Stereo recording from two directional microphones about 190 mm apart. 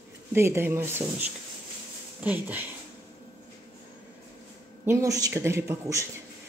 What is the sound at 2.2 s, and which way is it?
Speech, 10° right (ahead or behind).